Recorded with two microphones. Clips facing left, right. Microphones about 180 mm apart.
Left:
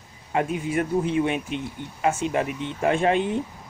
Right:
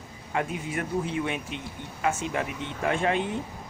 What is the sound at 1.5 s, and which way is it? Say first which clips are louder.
Speech: left 6 dB; 20° left (ahead or behind).